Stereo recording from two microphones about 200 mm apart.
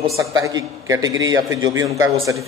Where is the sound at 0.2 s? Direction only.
15° right (ahead or behind).